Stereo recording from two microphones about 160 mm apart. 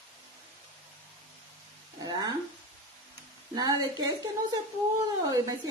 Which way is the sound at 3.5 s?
25° right (ahead or behind).